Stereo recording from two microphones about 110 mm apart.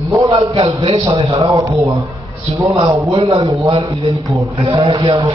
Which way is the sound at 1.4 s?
30° right (ahead or behind).